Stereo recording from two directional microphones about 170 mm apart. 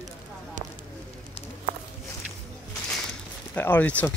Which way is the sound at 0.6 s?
50° right (ahead or behind).